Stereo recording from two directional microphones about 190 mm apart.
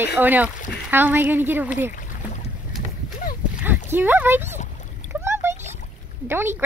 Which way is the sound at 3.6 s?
10° right (ahead or behind).